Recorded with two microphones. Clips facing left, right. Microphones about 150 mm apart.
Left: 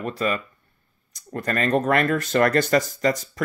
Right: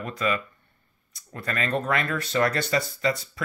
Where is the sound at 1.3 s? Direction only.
45° left (ahead or behind).